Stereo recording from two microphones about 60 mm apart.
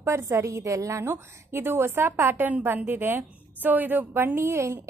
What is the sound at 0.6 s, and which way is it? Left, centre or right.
Speech, right.